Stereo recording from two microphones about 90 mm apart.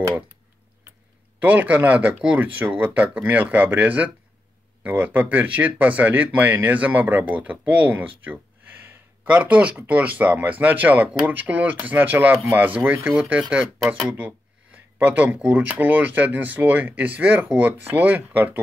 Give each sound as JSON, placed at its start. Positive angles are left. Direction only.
{"t": 1.4, "sound": "speech", "side_deg": -20}